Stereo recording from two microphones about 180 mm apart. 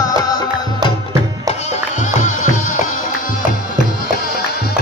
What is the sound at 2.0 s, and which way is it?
Music, 45° left (ahead or behind).